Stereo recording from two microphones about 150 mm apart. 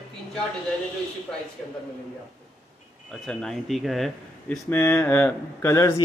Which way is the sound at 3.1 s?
5° left (ahead or behind).